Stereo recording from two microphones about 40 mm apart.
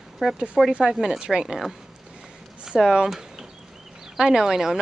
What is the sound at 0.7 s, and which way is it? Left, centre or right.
Speech, right.